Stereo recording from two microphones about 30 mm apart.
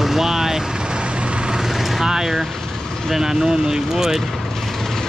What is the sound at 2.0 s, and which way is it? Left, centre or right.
Speech, centre.